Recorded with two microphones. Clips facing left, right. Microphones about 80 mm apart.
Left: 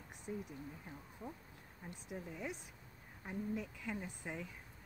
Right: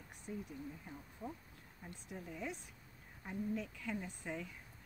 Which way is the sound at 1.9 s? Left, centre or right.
Centre.